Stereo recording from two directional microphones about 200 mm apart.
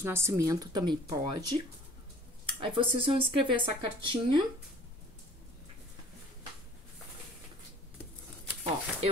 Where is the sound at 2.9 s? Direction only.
25° right (ahead or behind).